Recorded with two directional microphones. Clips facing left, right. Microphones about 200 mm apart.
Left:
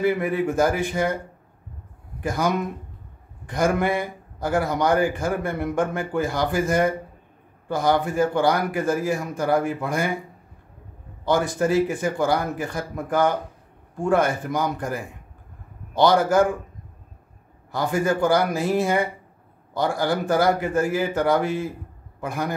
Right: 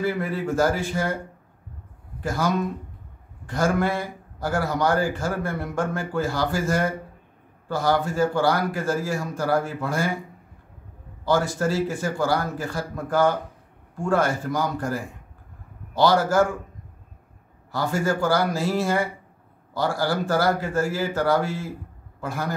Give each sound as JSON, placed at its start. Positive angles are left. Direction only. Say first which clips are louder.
{"t": 0.0, "sound": "a man's voice", "louder": "left 4 dB", "side_deg": 20}
{"t": 2.2, "sound": "a man's voice", "louder": "left 1 dB", "side_deg": 15}
{"t": 11.2, "sound": "a man's voice", "louder": "left 1 dB", "side_deg": 20}
{"t": 17.6, "sound": "a man's voice", "louder": "left 2 dB", "side_deg": 20}